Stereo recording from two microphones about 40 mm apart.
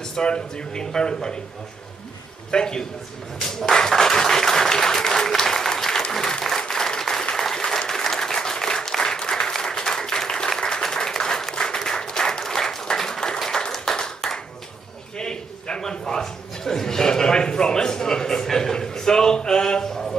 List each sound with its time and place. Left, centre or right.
0.0 s speech: centre
2.5 s speech: left
3.4 s applause: centre
15.1 s a sound: left